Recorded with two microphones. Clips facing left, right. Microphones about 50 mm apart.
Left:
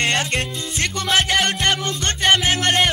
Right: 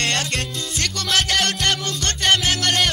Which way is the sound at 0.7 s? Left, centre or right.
Left.